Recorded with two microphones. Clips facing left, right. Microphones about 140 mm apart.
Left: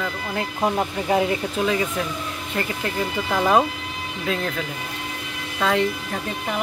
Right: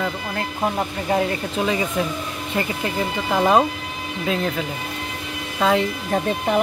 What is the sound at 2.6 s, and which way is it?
Speech, 15° right (ahead or behind).